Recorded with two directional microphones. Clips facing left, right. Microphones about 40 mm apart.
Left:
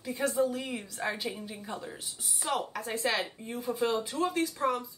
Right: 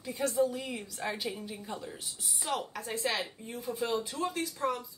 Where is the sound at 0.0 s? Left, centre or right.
Centre.